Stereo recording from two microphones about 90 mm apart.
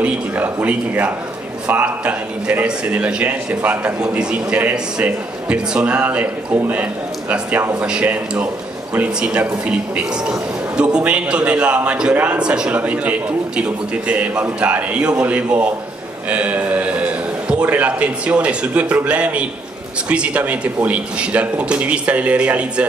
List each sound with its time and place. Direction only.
0.0 s a man's voice: 15° right (ahead or behind)